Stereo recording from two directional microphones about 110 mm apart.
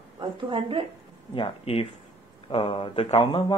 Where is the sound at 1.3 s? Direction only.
55° left (ahead or behind).